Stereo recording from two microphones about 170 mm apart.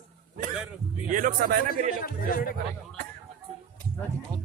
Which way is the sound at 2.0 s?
60° left (ahead or behind).